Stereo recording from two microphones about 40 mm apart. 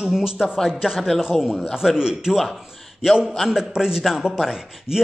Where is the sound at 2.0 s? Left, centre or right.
Centre.